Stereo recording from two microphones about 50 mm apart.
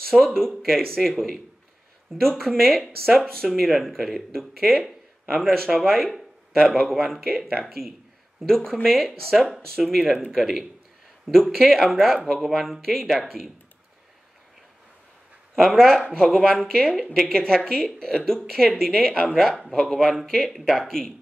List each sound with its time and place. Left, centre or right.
0.1 s a woman's voice: centre
3.3 s a woman's voice: centre
15.5 s a woman's voice: centre
19.3 s speech: centre